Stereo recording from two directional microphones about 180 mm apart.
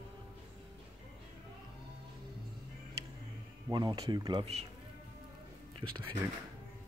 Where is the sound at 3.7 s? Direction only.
25° right (ahead or behind).